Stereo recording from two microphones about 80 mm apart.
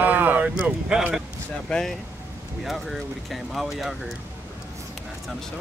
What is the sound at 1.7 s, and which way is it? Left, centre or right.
Speech, centre.